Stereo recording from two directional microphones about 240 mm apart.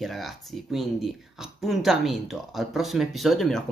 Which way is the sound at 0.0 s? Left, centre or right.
Centre.